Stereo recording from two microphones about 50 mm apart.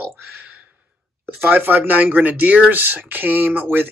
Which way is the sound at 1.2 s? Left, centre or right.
Right.